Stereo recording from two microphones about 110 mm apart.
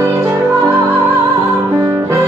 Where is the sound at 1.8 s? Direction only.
30° right (ahead or behind).